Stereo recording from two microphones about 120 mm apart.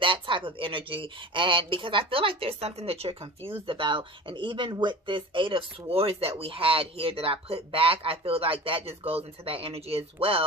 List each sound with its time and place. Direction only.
0.0 s speech: 45° right (ahead or behind)